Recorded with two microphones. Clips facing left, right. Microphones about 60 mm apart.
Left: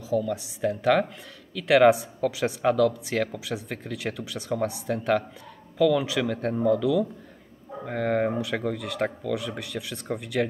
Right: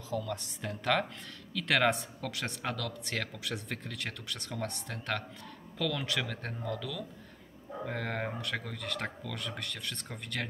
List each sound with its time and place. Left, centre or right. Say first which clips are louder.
0.1 s speech: left 10 dB; centre